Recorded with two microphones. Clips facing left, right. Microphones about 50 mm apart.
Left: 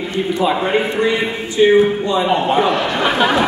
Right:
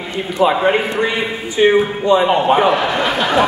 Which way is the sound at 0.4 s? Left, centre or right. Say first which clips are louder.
Right 4 dB; centre.